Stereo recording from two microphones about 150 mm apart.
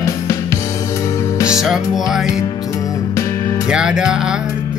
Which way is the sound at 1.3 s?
20° left (ahead or behind).